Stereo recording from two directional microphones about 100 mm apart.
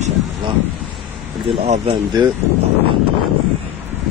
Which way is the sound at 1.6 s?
75° right (ahead or behind).